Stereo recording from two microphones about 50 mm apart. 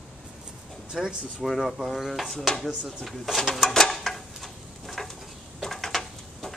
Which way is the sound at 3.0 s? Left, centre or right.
Centre.